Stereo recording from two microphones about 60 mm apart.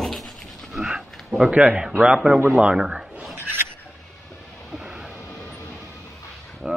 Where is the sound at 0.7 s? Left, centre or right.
Centre.